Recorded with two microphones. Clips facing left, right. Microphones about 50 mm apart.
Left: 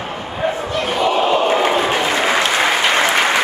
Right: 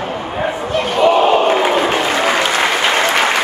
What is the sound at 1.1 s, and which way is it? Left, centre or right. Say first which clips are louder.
Crowd: right 3 dB; centre.